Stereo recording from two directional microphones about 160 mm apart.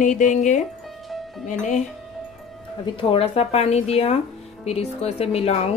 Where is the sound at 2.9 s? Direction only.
35° left (ahead or behind).